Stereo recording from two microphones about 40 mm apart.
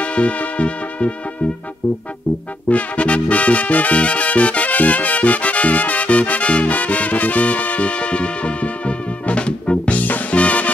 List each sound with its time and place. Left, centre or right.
0.0 s music: left
2.7 s music: left